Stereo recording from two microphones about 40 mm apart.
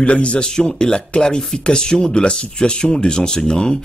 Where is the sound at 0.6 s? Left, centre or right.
Centre.